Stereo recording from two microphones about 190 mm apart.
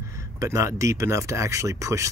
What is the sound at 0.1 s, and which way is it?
Speech, 15° right (ahead or behind).